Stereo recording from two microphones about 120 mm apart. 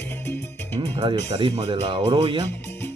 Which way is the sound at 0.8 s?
45° right (ahead or behind).